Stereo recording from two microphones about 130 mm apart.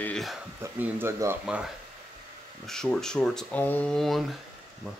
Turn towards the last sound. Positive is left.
turn(degrees=0)  # may be behind; listen again after turning